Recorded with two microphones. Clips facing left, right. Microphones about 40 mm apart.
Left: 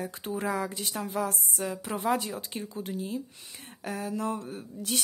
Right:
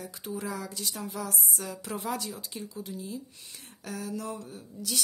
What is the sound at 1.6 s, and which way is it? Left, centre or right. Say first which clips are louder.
Speech: left 10 dB; left.